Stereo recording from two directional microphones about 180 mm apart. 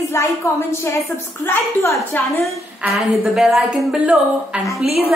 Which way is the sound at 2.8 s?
Centre (ahead or behind).